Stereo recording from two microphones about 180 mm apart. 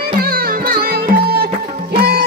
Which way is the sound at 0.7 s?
55° right (ahead or behind).